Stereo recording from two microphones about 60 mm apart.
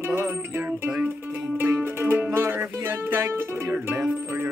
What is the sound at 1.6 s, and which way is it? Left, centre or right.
Music, right.